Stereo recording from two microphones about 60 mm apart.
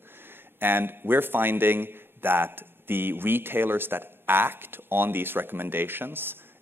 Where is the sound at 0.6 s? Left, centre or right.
Right.